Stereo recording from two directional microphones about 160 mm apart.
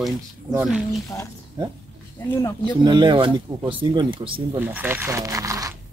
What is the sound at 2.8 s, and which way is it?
Speech, 30° right (ahead or behind).